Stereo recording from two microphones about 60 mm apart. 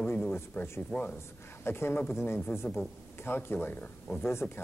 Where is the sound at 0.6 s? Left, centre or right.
Left.